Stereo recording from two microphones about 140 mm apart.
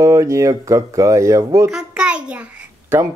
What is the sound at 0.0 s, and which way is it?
Speech, 20° right (ahead or behind).